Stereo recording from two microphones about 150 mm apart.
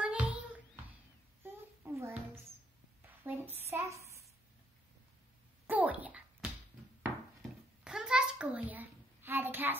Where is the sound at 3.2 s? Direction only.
10° right (ahead or behind).